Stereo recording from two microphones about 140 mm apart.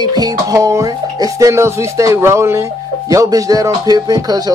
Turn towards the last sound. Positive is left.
turn(degrees=-25)  # may be behind; listen again after turning